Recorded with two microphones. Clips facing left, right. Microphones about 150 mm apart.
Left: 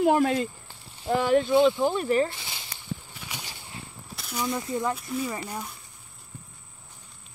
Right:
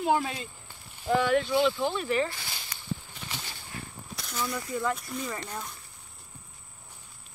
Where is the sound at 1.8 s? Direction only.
45° left (ahead or behind).